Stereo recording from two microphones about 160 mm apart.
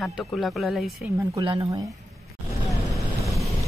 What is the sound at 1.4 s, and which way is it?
Speech, 30° right (ahead or behind).